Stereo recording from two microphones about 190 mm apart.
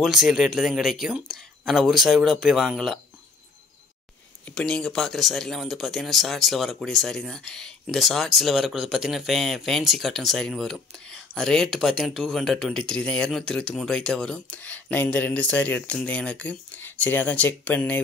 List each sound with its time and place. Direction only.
0.0 s speech: centre (ahead or behind)
4.5 s speech: 5° left (ahead or behind)